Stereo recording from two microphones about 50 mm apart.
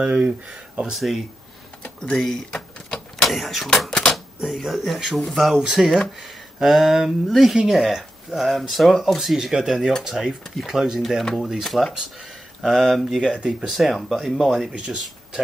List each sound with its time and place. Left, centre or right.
0.0 s speech: right
0.9 s speech: centre
2.5 s a sound: centre
3.3 s speech: centre
3.9 s typewriter: centre
4.5 s speech: centre
11.3 s speech: centre
11.6 s speech: centre
13.2 s speech: centre
13.7 s speech: centre
14.7 s speech: right